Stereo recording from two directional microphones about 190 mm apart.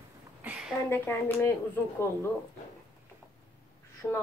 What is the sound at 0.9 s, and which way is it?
Speech, 10° left (ahead or behind).